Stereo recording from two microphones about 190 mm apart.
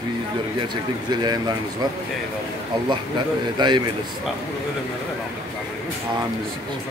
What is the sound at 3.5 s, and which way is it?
Speech, 25° right (ahead or behind).